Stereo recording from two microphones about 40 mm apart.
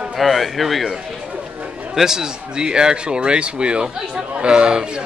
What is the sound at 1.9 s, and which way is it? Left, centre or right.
Speech, centre.